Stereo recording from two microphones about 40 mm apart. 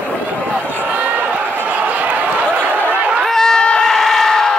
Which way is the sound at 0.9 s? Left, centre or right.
Right.